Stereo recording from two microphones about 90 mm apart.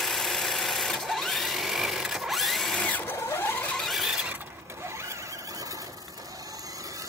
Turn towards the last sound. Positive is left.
turn(degrees=-30)  # may be behind; listen again after turning